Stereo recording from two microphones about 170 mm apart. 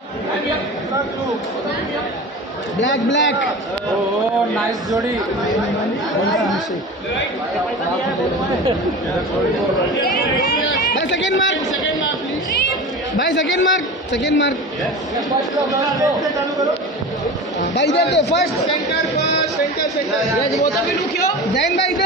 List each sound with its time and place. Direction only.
2.8 s a man's voice: 90° left
6.3 s speech: centre (ahead or behind)
11.0 s speech: 90° left
13.7 s a man's voice: 90° left
15.9 s a man's voice: 20° right (ahead or behind)
17.7 s a man's voice: 90° left